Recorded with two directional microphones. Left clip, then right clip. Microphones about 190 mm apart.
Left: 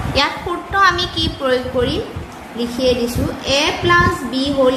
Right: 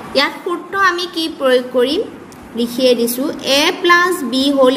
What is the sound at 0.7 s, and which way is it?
A woman's voice, 40° right (ahead or behind).